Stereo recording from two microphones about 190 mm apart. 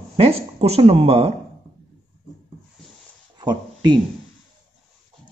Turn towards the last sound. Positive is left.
turn(degrees=-25)  # may be behind; listen again after turning